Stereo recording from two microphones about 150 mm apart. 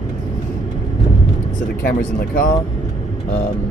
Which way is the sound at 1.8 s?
70° left (ahead or behind).